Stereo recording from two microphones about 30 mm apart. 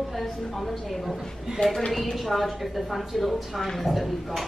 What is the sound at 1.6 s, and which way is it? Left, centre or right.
Speech, left.